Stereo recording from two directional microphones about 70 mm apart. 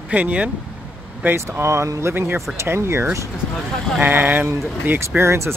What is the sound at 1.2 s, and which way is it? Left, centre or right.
Speech, right.